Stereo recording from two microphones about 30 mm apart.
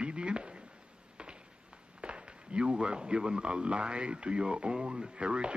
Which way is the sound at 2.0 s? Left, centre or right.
Right.